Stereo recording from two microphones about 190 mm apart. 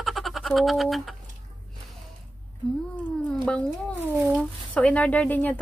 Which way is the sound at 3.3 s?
5° left (ahead or behind).